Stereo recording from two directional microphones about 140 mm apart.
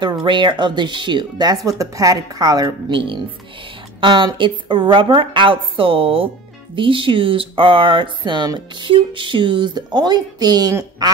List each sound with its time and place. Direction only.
0.0 s a woman's voice: 35° right (ahead or behind)